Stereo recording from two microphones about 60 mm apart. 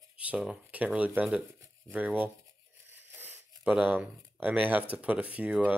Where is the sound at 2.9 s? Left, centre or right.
Right.